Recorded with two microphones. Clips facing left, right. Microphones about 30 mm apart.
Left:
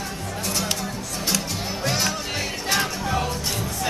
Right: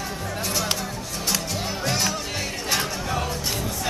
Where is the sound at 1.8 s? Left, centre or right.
Centre.